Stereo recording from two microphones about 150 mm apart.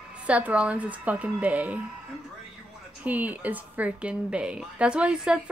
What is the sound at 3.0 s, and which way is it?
A woman's voice, 10° right (ahead or behind).